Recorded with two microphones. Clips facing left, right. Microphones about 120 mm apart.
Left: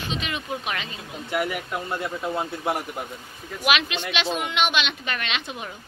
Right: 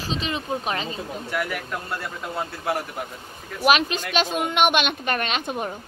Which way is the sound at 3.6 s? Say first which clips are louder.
Right 4 dB; 40° right (ahead or behind).